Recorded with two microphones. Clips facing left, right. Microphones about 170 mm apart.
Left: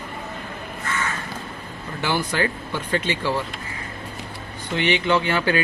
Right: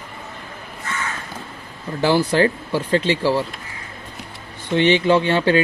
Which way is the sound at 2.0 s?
30° right (ahead or behind).